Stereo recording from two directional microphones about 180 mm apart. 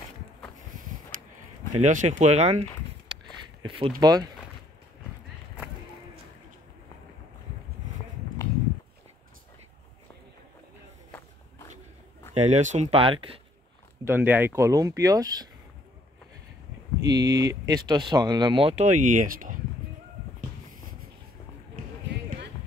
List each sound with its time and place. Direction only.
1.8 s speech: 40° right (ahead or behind)
3.6 s speech: 30° right (ahead or behind)
12.4 s speech: 40° right (ahead or behind)
14.0 s speech: 10° right (ahead or behind)
17.0 s speech: 20° right (ahead or behind)
18.9 s speech: 45° right (ahead or behind)